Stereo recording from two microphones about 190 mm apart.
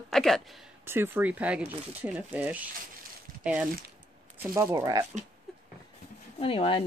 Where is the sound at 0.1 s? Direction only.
Centre (ahead or behind).